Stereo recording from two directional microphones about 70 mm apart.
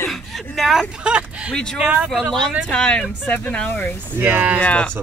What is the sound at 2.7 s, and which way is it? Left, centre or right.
Speech, centre.